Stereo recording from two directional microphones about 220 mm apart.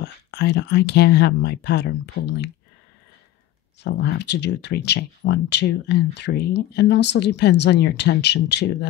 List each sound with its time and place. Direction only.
0.0 s speech: 50° left (ahead or behind)
3.8 s speech: 50° left (ahead or behind)